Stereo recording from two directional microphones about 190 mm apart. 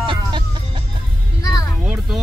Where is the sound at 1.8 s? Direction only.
5° right (ahead or behind).